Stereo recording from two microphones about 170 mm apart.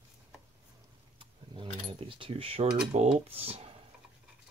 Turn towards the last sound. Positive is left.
turn(degrees=-35)  # may be behind; listen again after turning